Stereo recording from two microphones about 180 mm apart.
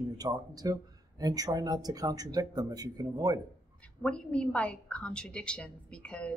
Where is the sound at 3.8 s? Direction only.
5° left (ahead or behind).